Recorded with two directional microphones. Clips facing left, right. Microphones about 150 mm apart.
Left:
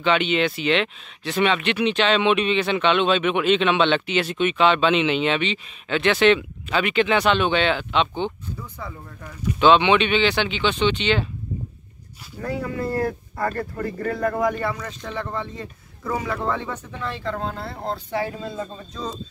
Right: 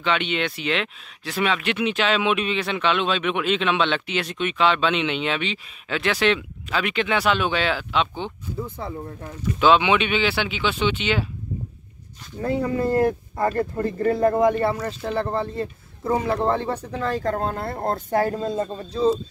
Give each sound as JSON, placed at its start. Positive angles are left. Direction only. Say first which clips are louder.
{"t": 0.0, "sound": "speech", "louder": "left 4 dB", "side_deg": 0}
{"t": 8.5, "sound": "speech", "louder": "right 6 dB", "side_deg": -30}
{"t": 9.6, "sound": "speech", "louder": "left 2 dB", "side_deg": -5}
{"t": 12.4, "sound": "speech", "louder": "right 4 dB", "side_deg": -25}